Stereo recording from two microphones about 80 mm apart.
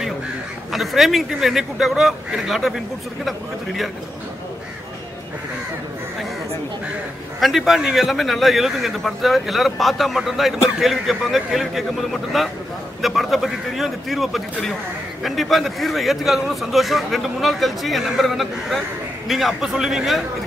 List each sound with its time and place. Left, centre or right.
0.7 s a man's voice: centre
7.3 s a man's voice: centre